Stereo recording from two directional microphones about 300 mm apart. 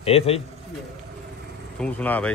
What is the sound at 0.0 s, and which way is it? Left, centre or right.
Speech, centre.